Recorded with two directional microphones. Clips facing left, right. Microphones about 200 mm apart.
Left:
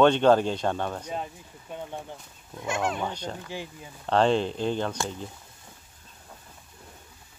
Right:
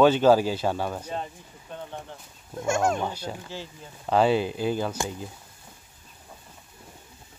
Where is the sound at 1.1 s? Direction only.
10° left (ahead or behind).